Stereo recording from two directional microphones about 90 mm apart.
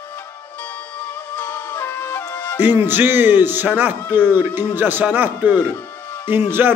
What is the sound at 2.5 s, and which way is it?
A man's voice, 20° right (ahead or behind).